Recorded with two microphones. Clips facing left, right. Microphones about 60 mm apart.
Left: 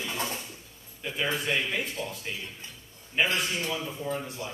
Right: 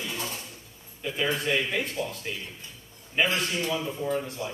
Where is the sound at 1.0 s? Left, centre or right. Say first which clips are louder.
Right 2 dB; centre.